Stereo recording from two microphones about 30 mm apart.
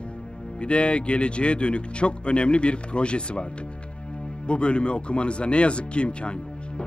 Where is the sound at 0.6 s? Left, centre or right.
Left.